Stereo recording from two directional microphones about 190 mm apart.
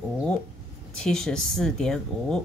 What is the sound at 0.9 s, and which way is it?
Speech, 5° left (ahead or behind).